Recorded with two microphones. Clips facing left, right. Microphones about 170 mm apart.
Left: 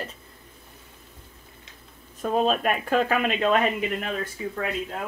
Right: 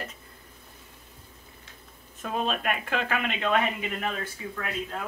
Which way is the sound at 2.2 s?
40° left (ahead or behind).